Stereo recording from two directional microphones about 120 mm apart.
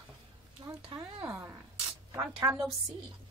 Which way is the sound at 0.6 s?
40° right (ahead or behind).